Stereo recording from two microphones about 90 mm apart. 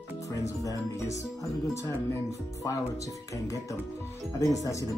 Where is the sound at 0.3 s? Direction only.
35° left (ahead or behind).